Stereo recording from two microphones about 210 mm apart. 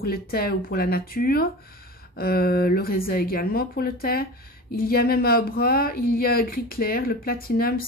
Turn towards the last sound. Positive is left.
turn(degrees=45)  # may be behind; listen again after turning